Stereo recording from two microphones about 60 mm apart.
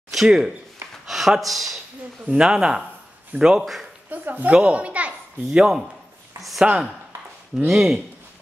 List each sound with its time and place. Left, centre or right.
0.1 s a sound: centre
1.0 s speech: centre
2.4 s a man's voice: centre
4.1 s a child's voice: right
5.5 s a man's voice: centre